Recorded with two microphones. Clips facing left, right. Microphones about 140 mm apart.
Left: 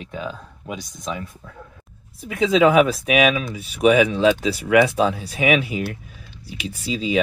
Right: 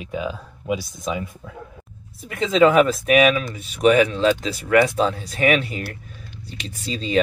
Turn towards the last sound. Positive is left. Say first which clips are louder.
# left 3 dB
turn(degrees=5)  # may be behind; listen again after turning